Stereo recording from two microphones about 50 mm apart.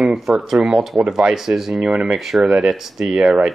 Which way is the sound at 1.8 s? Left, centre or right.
Centre.